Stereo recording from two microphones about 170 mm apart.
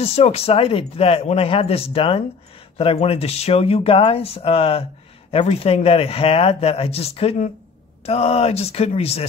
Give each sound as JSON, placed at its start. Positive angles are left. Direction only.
{"t": 0.0, "sound": "speech", "side_deg": 35}